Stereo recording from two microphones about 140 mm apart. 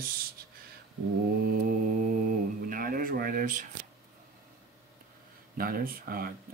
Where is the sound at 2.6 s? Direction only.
90° right; by 3.7 s 70° right (ahead or behind).